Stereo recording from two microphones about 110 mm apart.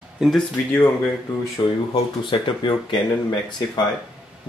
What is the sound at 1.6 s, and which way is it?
Speech, 40° left (ahead or behind).